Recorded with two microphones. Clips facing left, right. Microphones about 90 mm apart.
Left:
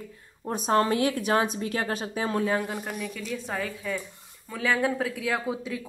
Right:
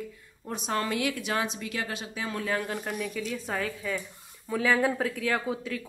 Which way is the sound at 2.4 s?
25° left (ahead or behind).